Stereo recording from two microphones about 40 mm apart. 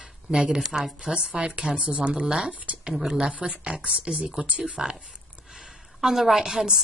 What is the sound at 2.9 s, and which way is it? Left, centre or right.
Speech, centre.